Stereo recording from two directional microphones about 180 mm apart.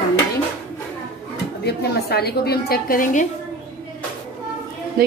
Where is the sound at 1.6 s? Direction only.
65° left (ahead or behind); by 3.3 s 45° left (ahead or behind).